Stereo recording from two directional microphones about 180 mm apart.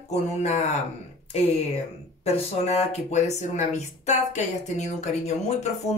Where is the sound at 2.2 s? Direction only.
35° left (ahead or behind).